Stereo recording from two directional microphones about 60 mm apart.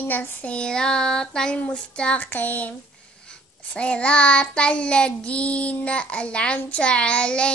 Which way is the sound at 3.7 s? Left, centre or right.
Centre.